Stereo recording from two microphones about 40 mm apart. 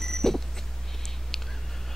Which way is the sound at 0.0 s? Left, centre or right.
Centre.